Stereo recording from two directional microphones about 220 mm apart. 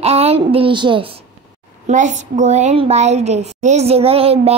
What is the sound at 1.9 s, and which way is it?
A woman's voice, 35° right (ahead or behind).